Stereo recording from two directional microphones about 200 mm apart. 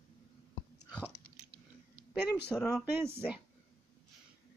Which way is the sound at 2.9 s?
10° right (ahead or behind).